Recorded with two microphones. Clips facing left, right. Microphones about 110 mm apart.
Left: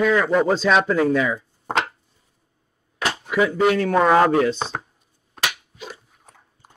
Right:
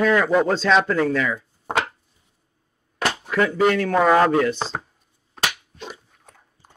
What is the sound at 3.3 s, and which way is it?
A man's voice, 5° left (ahead or behind).